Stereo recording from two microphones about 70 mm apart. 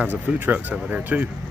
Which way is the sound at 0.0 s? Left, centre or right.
Right.